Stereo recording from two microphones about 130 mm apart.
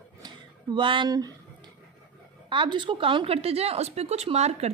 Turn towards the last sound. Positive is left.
turn(degrees=-55)  # may be behind; listen again after turning